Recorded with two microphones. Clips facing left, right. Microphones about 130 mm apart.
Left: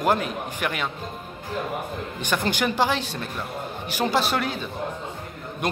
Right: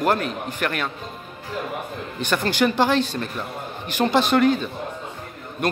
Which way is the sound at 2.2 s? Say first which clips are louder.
Right 4 dB; 15° left (ahead or behind).